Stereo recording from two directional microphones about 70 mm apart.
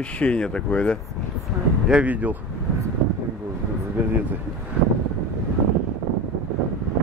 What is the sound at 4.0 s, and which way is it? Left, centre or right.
Speech, right.